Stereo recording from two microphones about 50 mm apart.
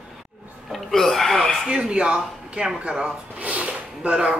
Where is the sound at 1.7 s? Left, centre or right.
Centre.